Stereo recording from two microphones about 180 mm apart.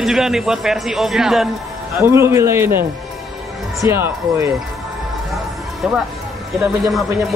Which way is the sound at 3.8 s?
15° right (ahead or behind).